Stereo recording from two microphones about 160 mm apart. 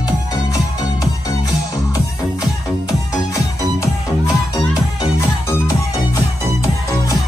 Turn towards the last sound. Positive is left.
turn(degrees=20)  # may be behind; listen again after turning